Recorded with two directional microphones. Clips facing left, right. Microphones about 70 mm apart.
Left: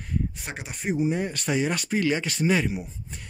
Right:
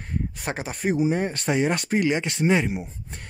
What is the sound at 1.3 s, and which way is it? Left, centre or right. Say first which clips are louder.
Speech: right 3 dB; right.